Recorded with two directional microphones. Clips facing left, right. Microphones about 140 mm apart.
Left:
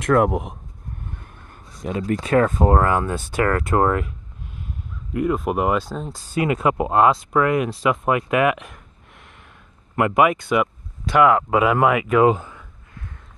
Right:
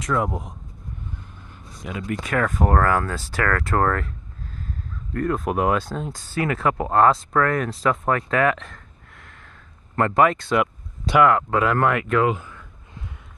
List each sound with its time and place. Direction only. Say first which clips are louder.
0.0 s speech: left 7 dB; 60° left (ahead or behind)
1.9 s speech: left 6 dB; 35° left (ahead or behind); by 6.2 s centre (ahead or behind)
6.3 s speech: left 3 dB; 20° left (ahead or behind)
10.6 s speech: even; centre (ahead or behind)
12.3 s speech: left 6 dB; 30° left (ahead or behind)